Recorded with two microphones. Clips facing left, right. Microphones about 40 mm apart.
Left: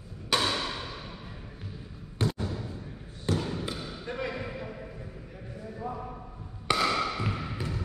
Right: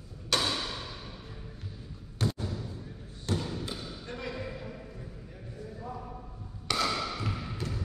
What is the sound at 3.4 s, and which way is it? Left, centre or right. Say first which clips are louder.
Basketball bounce: left 3 dB; left.